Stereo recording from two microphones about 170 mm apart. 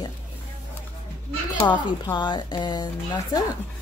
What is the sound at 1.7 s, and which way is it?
A woman's voice, 25° left (ahead or behind).